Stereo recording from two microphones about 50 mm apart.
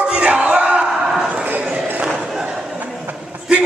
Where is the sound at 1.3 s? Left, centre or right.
Right.